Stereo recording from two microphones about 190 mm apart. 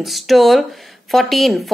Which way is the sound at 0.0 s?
Centre (ahead or behind).